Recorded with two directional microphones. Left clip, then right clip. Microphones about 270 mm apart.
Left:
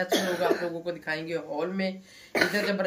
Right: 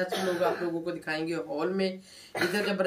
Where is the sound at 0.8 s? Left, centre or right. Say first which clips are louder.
Even; centre.